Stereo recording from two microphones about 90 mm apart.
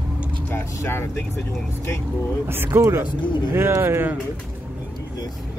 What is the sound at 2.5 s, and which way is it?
Speech, 25° right (ahead or behind).